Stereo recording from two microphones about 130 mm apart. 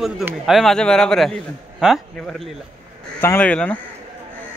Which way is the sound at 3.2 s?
15° left (ahead or behind).